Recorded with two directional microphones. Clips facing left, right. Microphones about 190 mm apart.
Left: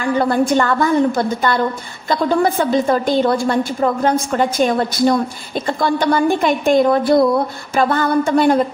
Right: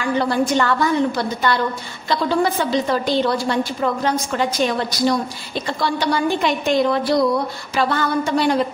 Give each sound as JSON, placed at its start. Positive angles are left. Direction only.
{"t": 0.2, "sound": "a woman's voice", "side_deg": 50}